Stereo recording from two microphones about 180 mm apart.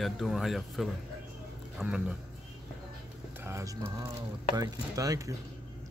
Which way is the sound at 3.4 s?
15° right (ahead or behind).